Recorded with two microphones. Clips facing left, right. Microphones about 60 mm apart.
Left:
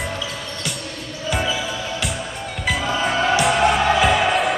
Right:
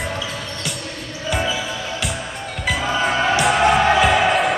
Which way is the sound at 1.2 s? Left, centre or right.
Centre.